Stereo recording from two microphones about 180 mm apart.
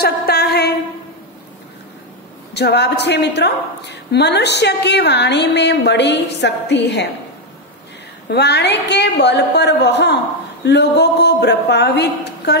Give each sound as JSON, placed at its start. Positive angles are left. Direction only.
{"t": 0.0, "sound": "a sound", "side_deg": 60}
{"t": 2.5, "sound": "a woman's voice", "side_deg": 70}
{"t": 8.3, "sound": "a woman's voice", "side_deg": 70}